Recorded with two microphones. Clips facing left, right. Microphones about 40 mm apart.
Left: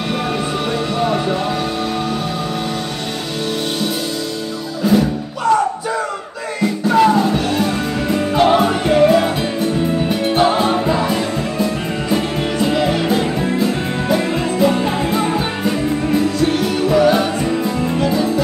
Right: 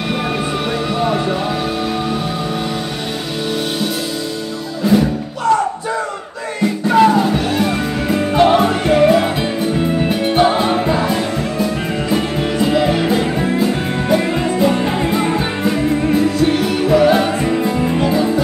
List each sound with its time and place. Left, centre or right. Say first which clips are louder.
0.9 s music: even; centre
4.8 s music: right 1 dB; centre
12.1 s music: even; centre